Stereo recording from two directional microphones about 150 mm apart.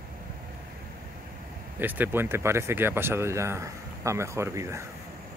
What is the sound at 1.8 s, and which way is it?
Speech, 10° right (ahead or behind).